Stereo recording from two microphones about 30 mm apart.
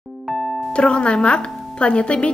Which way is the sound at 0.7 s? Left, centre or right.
Left.